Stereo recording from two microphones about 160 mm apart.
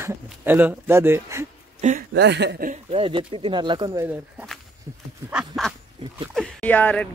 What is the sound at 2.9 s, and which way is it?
Speech, 35° right (ahead or behind).